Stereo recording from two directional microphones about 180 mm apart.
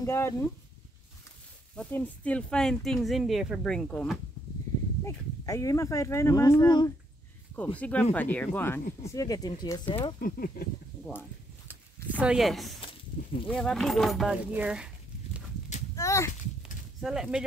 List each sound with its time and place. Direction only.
0.0 s speech: 15° left (ahead or behind)
1.8 s speech: 10° left (ahead or behind)
5.0 s speech: 20° left (ahead or behind)
7.5 s speech: 10° left (ahead or behind)
10.2 s speech: 50° left (ahead or behind)
12.2 s speech: 5° right (ahead or behind)
13.2 s a sound: 45° left (ahead or behind)
13.5 s speech: 5° left (ahead or behind)
16.0 s a sound: 15° left (ahead or behind)
17.0 s speech: 5° right (ahead or behind)